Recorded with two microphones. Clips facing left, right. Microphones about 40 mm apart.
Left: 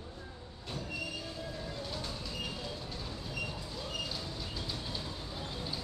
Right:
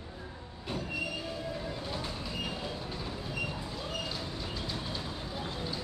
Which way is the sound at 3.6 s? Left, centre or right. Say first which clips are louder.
Right 2 dB; centre.